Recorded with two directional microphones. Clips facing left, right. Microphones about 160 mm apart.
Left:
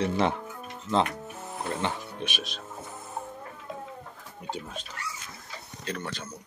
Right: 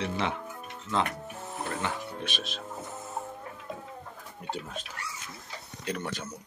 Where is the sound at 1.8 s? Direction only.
30° left (ahead or behind).